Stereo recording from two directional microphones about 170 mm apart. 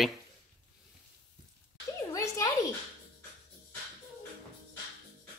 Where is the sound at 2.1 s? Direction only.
20° left (ahead or behind).